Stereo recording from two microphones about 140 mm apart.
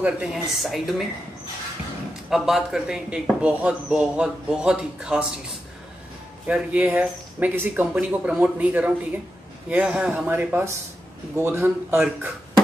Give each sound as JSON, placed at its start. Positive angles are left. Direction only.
{"t": 0.0, "sound": "speech", "side_deg": -5}
{"t": 2.2, "sound": "speech", "side_deg": 0}
{"t": 6.4, "sound": "speech", "side_deg": -10}